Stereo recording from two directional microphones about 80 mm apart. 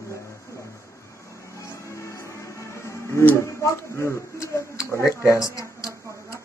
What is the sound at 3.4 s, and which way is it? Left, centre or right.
Speech, left.